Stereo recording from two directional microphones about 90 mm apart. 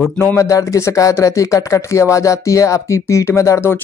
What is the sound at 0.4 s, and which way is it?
Speech, 35° left (ahead or behind).